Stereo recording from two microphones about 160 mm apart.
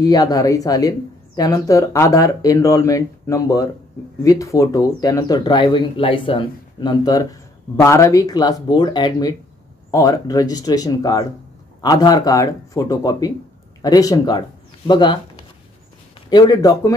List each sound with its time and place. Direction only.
0.0 s speech: 25° left (ahead or behind)
16.3 s speech: 25° left (ahead or behind)